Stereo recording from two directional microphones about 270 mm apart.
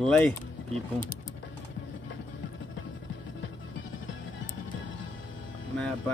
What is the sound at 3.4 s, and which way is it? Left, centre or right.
Music, left.